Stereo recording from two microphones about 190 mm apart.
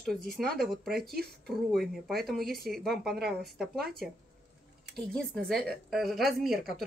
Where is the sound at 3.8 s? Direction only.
55° right (ahead or behind).